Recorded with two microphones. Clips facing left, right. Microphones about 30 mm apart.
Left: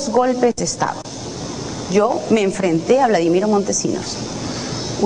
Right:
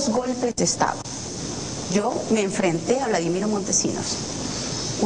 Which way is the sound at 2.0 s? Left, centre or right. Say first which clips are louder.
Left 6 dB; left.